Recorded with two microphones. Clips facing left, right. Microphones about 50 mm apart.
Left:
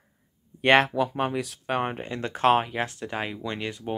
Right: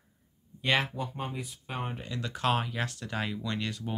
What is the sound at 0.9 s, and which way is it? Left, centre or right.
Speech, left.